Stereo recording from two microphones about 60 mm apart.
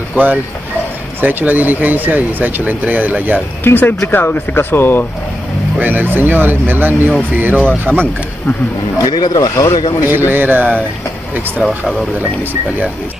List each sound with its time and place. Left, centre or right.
0.1 s speech: right
3.6 s speech: left
5.8 s speech: right
8.9 s speech: left
10.0 s speech: right
11.6 s speech: centre